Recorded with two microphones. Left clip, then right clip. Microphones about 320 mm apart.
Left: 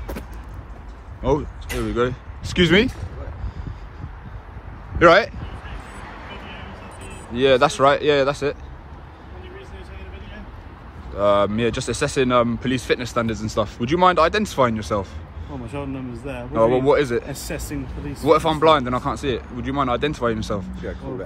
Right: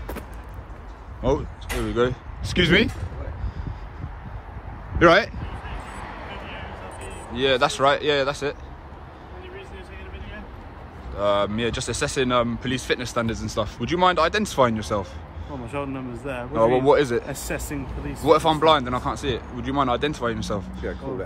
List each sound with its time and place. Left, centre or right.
1.2 s speech: centre
4.9 s a man's voice: centre
5.9 s vehicle: right
7.3 s speech: centre
11.1 s a man's voice: centre